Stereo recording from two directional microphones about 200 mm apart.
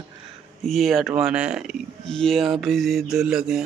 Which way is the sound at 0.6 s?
Centre (ahead or behind).